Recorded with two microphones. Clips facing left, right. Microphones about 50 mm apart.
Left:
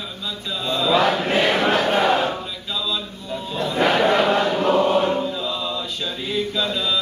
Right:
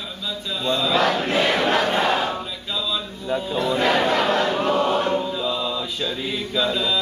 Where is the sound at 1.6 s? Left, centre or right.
Left.